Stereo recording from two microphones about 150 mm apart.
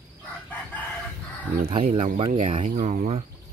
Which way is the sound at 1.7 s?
40° right (ahead or behind).